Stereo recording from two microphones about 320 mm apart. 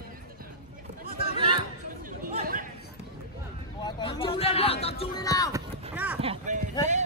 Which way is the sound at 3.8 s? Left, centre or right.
Centre.